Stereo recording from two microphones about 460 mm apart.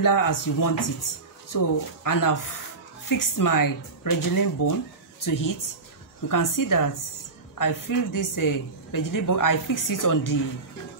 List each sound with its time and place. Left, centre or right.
0.0 s a woman's voice: left